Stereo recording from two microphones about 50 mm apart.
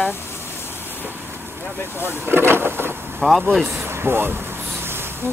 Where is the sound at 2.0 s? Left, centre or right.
Right.